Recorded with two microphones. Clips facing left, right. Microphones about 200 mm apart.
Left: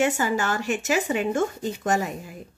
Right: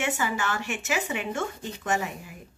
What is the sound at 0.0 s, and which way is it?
A woman's voice, 40° left (ahead or behind).